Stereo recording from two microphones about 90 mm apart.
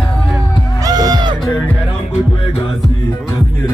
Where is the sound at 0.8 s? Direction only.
45° right (ahead or behind).